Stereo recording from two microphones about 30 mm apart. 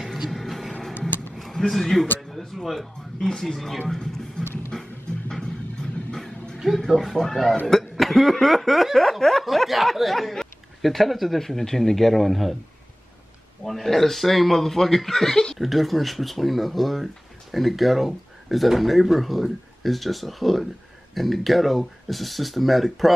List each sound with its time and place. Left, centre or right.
0.3 s music: centre
1.7 s speech: centre
2.3 s music: centre
3.3 s speech: centre
3.9 s a sound: centre
6.1 s music: centre
6.9 s speech: centre
13.7 s speech: centre